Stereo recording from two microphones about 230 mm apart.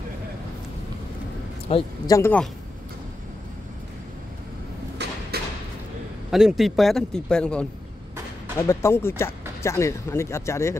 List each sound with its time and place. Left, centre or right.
1.7 s speech: centre
5.3 s thump: right
6.3 s speech: centre